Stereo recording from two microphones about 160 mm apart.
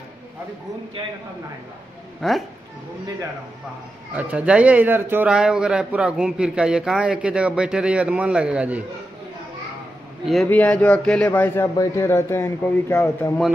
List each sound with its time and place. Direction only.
2.2 s speech: centre (ahead or behind)
4.1 s speech: 10° right (ahead or behind)
10.2 s speech: centre (ahead or behind); by 13.3 s 15° left (ahead or behind)